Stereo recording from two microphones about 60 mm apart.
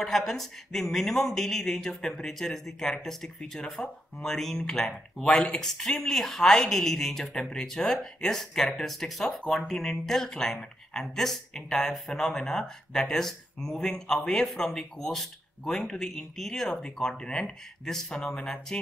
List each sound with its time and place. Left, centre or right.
0.0 s speech: centre